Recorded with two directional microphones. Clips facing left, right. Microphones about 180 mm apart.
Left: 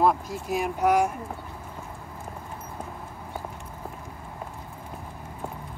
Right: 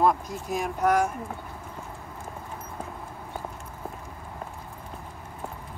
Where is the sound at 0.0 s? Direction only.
5° left (ahead or behind).